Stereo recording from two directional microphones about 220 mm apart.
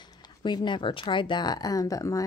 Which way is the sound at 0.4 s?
20° left (ahead or behind).